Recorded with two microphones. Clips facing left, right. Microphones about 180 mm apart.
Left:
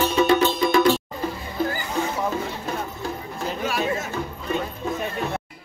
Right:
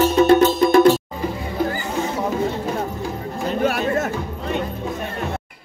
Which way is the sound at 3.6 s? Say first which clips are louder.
Right 6 dB; 55° right (ahead or behind).